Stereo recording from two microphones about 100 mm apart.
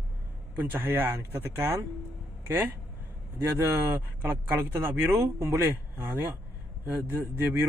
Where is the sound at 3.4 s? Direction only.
25° right (ahead or behind).